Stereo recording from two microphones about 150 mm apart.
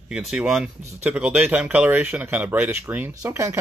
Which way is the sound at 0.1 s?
5° right (ahead or behind).